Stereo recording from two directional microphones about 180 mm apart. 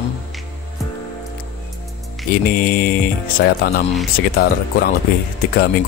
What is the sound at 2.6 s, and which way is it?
Music, 50° left (ahead or behind).